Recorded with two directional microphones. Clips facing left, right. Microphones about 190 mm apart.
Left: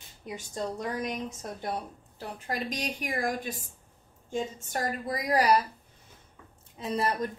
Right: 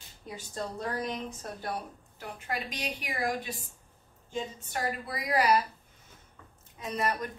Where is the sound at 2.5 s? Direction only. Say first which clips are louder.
Left 3 dB; 40° left (ahead or behind).